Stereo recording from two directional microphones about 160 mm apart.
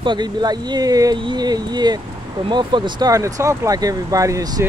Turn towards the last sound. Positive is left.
turn(degrees=-20)  # may be behind; listen again after turning